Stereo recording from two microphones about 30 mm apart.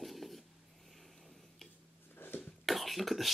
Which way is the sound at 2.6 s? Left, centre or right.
Centre.